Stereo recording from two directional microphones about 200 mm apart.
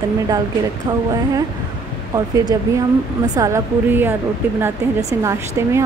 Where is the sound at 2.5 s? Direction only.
15° right (ahead or behind).